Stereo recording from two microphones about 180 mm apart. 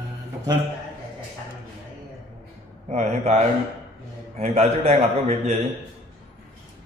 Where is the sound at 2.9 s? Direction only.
35° right (ahead or behind).